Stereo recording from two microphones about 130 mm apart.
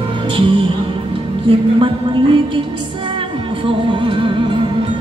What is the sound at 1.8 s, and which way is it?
Music, 40° right (ahead or behind).